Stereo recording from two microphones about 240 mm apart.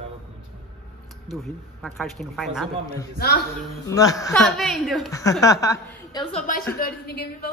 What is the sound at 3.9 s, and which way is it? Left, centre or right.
Speech, centre.